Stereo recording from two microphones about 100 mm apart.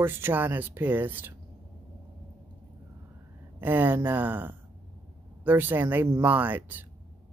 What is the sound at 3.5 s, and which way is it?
Speech, 20° right (ahead or behind).